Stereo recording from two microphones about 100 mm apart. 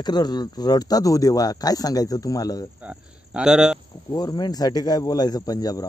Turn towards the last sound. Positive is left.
turn(degrees=40)  # may be behind; listen again after turning